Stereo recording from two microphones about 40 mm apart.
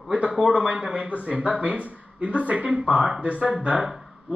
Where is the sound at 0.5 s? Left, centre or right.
Right.